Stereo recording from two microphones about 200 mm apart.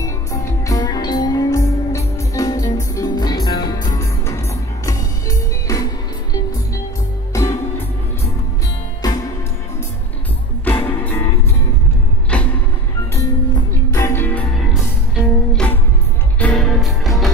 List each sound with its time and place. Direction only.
0.0 s music: 15° left (ahead or behind)
7.3 s music: 15° left (ahead or behind)
9.0 s music: 20° left (ahead or behind)
10.6 s music: 10° left (ahead or behind)
12.3 s vehicle: 5° left (ahead or behind)
13.1 s music: 15° left (ahead or behind)
14.7 s music: 5° right (ahead or behind)